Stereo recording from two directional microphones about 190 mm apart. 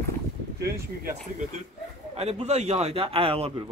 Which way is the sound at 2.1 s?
35° right (ahead or behind).